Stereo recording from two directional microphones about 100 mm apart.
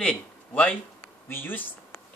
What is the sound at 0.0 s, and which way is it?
Speech, 10° left (ahead or behind).